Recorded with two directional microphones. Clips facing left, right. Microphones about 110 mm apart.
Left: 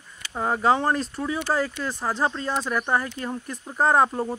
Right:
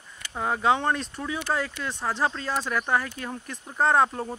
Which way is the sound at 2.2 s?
25° left (ahead or behind).